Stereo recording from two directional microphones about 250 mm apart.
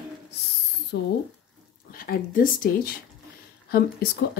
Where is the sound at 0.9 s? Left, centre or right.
Left.